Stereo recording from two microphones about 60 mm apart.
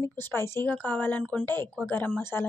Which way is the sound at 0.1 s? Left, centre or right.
Left.